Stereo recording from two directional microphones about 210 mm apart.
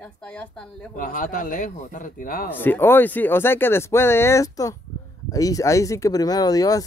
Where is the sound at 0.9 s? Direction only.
40° left (ahead or behind).